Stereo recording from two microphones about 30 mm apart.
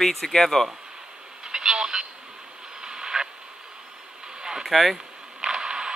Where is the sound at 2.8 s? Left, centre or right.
Right.